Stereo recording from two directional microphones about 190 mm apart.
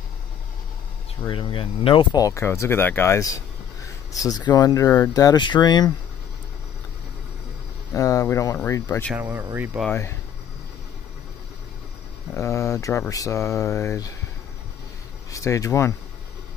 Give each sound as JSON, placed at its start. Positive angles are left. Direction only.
{"t": 1.2, "sound": "speech", "side_deg": 25}
{"t": 7.9, "sound": "speech", "side_deg": 15}
{"t": 9.1, "sound": "speech", "side_deg": -10}
{"t": 12.4, "sound": "speech", "side_deg": 15}
{"t": 15.3, "sound": "speech", "side_deg": 15}